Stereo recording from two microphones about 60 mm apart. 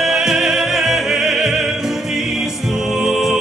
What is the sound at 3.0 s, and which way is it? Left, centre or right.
Music, centre.